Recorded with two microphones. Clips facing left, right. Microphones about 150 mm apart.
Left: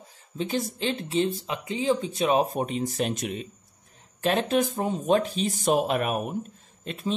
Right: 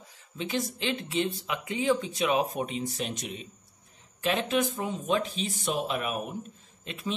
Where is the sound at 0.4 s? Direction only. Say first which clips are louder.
Left 3 dB; 35° left (ahead or behind).